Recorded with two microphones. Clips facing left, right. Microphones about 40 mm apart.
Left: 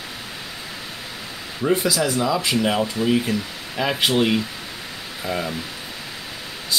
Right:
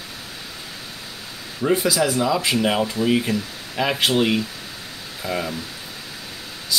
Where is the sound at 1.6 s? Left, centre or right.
Centre.